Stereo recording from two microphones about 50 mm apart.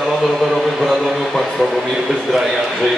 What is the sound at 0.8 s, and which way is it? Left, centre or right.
Speech, centre.